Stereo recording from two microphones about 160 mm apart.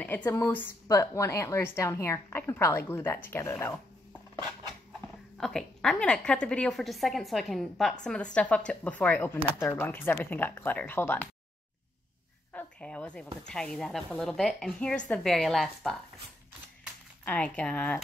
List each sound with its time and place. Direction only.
0.0 s a woman's voice: 10° left (ahead or behind)
5.4 s a woman's voice: 5° left (ahead or behind)
12.5 s a woman's voice: 5° left (ahead or behind)
17.2 s a woman's voice: 10° left (ahead or behind)